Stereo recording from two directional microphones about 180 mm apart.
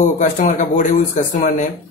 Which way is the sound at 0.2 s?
45° left (ahead or behind).